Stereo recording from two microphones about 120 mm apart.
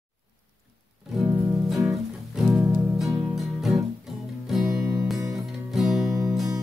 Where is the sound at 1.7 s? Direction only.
5° right (ahead or behind).